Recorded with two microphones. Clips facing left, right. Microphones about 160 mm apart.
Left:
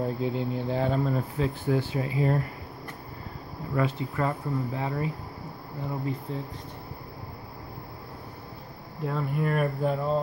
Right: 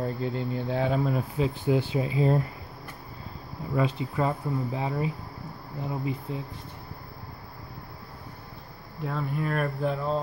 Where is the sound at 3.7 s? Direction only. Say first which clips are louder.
Right 1 dB; 15° right (ahead or behind).